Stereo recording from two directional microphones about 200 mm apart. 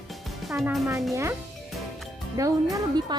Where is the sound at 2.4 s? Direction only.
15° right (ahead or behind).